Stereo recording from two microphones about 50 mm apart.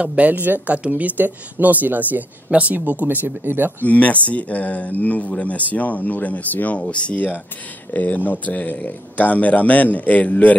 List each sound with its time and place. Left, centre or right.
0.0 s speech: right
3.8 s speech: left